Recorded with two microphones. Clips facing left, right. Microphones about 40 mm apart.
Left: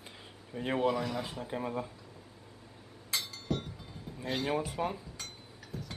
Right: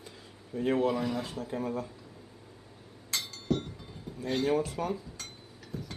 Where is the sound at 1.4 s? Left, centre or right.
Left.